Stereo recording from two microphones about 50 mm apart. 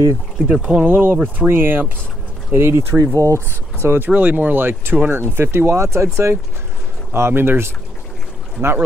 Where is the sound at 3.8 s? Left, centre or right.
Right.